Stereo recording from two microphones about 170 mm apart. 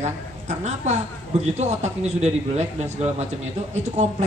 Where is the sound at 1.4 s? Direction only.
40° right (ahead or behind).